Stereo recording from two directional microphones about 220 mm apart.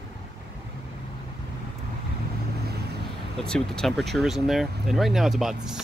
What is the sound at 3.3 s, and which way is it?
Speech, 5° left (ahead or behind).